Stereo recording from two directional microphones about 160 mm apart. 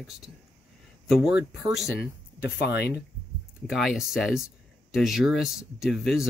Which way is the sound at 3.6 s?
Centre (ahead or behind).